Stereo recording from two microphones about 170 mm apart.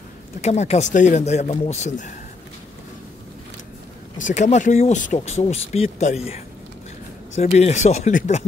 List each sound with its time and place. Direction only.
0.4 s speech: 40° left (ahead or behind)
4.2 s speech: 45° left (ahead or behind)